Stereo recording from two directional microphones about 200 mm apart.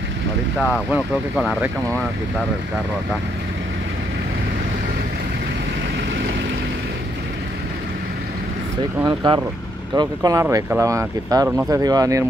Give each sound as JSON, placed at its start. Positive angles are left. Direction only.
{"t": 0.6, "sound": "speech", "side_deg": 5}
{"t": 9.0, "sound": "speech", "side_deg": -20}